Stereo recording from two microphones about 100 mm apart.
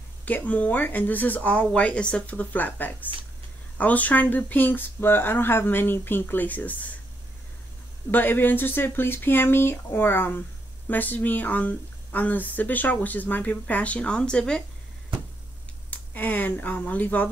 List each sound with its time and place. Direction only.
0.2 s speech: 15° left (ahead or behind)
8.1 s speech: 20° left (ahead or behind)
15.9 s speech: 15° left (ahead or behind)